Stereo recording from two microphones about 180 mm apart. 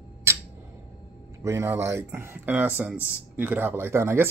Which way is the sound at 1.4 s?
15° right (ahead or behind).